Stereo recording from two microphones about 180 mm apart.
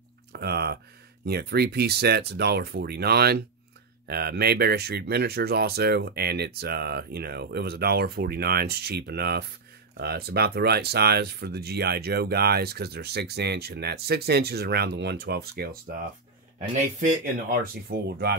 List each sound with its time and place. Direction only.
0.3 s a sound: 60° right (ahead or behind)
1.2 s speech: 60° right (ahead or behind)
16.5 s speech: 45° right (ahead or behind); by 18.3 s 65° right (ahead or behind)